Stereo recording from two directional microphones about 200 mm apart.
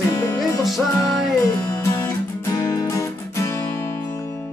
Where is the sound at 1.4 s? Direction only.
15° left (ahead or behind).